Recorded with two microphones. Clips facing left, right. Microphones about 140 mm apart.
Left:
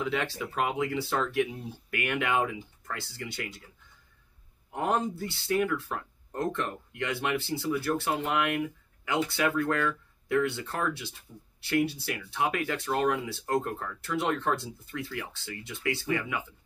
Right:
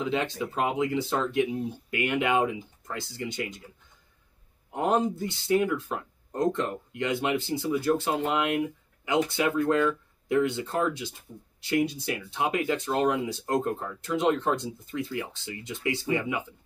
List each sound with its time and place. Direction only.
0.0 s speech: 20° right (ahead or behind)
4.7 s speech: 20° right (ahead or behind)